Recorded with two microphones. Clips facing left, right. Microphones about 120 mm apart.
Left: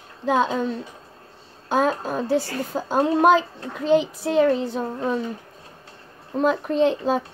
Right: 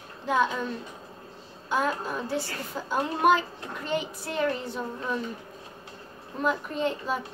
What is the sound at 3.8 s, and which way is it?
Speech, 90° left.